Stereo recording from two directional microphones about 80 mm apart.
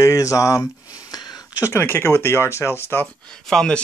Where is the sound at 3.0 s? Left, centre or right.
Centre.